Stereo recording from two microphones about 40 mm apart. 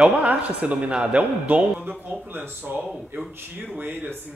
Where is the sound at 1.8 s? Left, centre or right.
Right.